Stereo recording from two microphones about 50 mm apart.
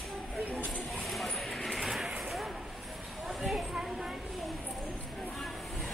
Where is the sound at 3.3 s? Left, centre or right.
Centre.